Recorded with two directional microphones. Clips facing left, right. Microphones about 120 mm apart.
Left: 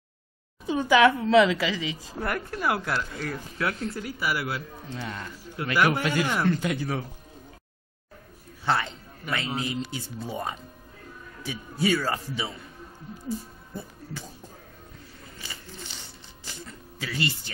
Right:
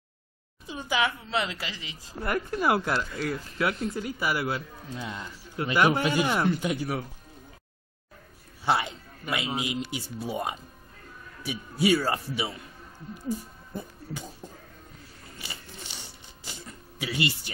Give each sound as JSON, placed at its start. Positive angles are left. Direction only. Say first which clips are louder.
{"t": 0.7, "sound": "a woman's voice", "louder": "left 9 dB", "side_deg": 80}
{"t": 2.2, "sound": "speech", "louder": "right 2 dB", "side_deg": -20}
{"t": 3.0, "sound": "speech", "louder": "right 2 dB", "side_deg": -10}
{"t": 3.9, "sound": "speech", "louder": "right 1 dB", "side_deg": -25}
{"t": 4.8, "sound": "speech", "louder": "left 1 dB", "side_deg": -10}
{"t": 8.6, "sound": "a man's voice", "louder": "even", "side_deg": -15}
{"t": 13.7, "sound": "speech", "louder": "right 1 dB", "side_deg": -15}
{"t": 16.0, "sound": "music", "louder": "even", "side_deg": -15}